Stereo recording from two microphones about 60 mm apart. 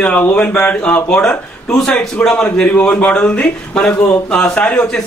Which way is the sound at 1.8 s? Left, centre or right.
Centre.